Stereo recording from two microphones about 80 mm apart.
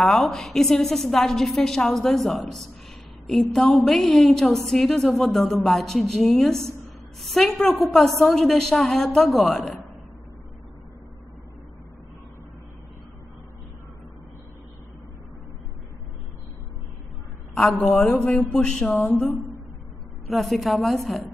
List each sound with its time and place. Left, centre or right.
0.0 s a woman's voice: centre
17.7 s a woman's voice: centre
19.0 s a woman's voice: left
20.2 s a woman's voice: centre